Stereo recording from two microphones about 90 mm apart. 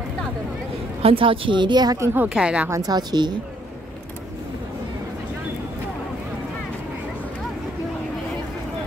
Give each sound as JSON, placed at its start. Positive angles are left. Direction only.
{"t": 1.0, "sound": "speech", "side_deg": -85}
{"t": 2.2, "sound": "speech", "side_deg": -10}
{"t": 2.7, "sound": "a woman's voice", "side_deg": -45}